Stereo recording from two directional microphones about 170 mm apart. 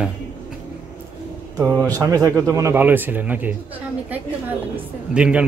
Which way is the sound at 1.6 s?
20° right (ahead or behind).